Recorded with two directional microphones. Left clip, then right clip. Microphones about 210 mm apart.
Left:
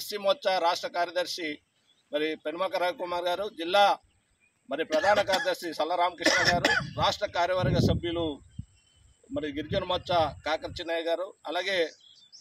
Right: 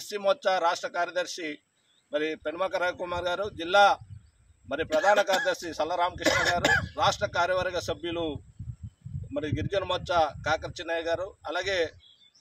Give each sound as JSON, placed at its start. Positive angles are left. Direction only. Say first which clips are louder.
{"t": 0.0, "sound": "a man's voice", "louder": "right 1 dB", "side_deg": 0}
{"t": 6.2, "sound": "cough", "louder": "left 1 dB", "side_deg": -30}
{"t": 6.5, "sound": "a man's voice", "louder": "right 1 dB", "side_deg": -5}